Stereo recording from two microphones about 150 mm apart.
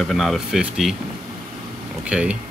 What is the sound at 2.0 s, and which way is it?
Speech, 10° right (ahead or behind).